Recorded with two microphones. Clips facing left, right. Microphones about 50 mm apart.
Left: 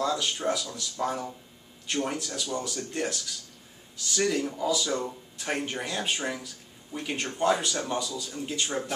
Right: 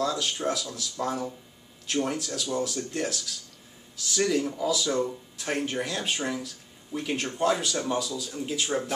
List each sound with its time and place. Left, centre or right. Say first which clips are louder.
0.0 s speech: even; centre